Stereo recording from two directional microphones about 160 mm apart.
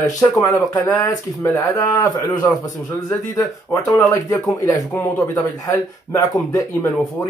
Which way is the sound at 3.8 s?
20° left (ahead or behind).